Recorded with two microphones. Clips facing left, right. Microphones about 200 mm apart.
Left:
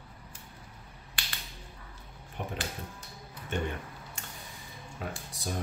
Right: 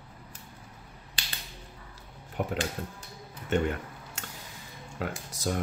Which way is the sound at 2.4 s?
90° right.